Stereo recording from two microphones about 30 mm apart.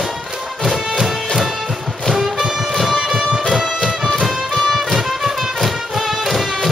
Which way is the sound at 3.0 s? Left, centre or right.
Centre.